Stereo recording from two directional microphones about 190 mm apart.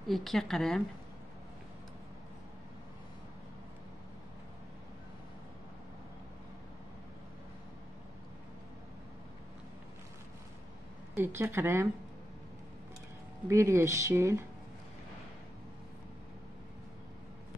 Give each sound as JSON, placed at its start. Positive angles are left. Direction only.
{"t": 0.1, "sound": "a woman's voice", "side_deg": 0}
{"t": 11.1, "sound": "speech", "side_deg": -10}
{"t": 13.5, "sound": "speech", "side_deg": -15}